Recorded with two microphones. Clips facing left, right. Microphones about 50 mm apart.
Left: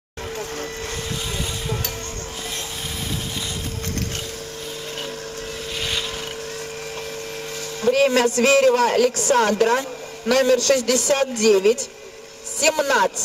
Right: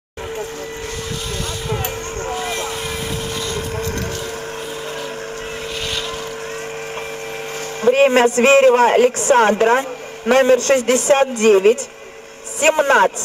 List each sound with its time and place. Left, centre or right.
7.8 s speech: right